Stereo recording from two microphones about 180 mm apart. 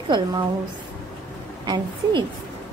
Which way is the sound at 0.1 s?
25° right (ahead or behind).